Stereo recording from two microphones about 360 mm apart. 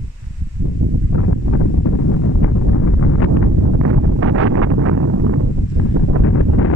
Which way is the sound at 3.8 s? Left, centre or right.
Right.